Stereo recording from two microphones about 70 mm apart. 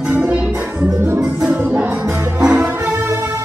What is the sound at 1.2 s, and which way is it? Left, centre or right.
Music, centre.